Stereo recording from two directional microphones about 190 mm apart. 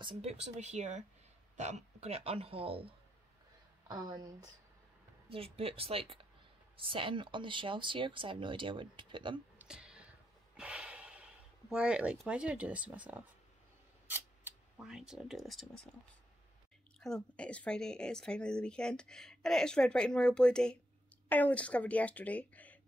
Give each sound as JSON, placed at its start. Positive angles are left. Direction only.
{"t": 0.0, "sound": "speech", "side_deg": -30}
{"t": 5.3, "sound": "speech", "side_deg": -30}
{"t": 9.6, "sound": "snort", "side_deg": -5}
{"t": 14.0, "sound": "speech", "side_deg": -5}
{"t": 17.0, "sound": "a woman's voice", "side_deg": 5}